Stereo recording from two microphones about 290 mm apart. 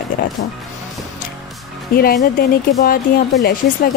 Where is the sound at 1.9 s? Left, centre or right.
Left.